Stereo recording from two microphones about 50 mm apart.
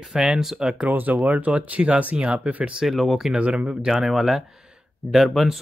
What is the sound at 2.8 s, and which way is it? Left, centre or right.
Speech, centre.